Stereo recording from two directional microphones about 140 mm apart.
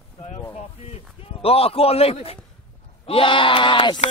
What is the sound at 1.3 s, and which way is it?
Speech, 45° left (ahead or behind).